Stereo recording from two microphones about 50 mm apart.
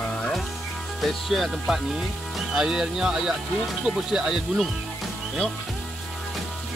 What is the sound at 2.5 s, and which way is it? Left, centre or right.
Speech, centre.